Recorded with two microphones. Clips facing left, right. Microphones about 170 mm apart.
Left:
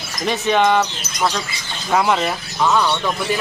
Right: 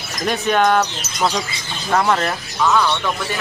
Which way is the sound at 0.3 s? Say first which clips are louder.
Even; centre (ahead or behind).